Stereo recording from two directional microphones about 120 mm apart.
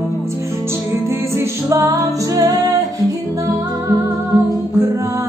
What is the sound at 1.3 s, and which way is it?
Music, 30° right (ahead or behind).